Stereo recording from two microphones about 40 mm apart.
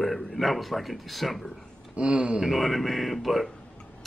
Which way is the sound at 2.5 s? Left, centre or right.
Centre.